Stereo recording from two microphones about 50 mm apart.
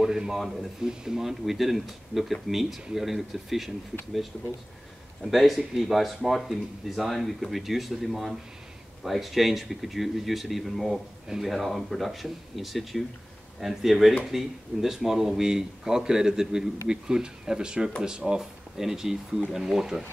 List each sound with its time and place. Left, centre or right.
0.0 s speech: centre
5.2 s speech: centre